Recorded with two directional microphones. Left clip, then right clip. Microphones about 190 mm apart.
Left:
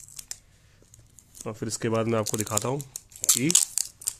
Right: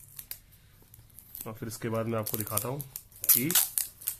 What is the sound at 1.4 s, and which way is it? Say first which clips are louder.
Speech: left 7 dB; 50° left (ahead or behind).